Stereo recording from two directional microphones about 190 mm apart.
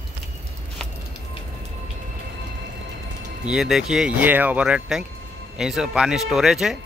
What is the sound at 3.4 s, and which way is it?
Speech, 5° right (ahead or behind).